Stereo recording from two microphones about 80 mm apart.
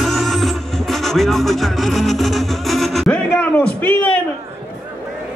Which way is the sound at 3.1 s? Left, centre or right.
Left.